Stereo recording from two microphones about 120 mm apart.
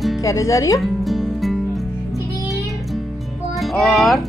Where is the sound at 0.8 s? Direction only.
Centre (ahead or behind).